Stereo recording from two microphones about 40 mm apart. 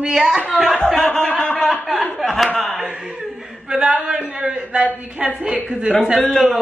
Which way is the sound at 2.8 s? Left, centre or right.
Right.